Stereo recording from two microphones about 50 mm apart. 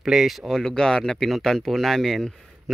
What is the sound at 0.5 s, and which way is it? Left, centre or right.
Speech, centre.